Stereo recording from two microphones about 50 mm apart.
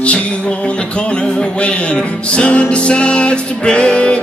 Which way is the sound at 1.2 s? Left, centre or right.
Left.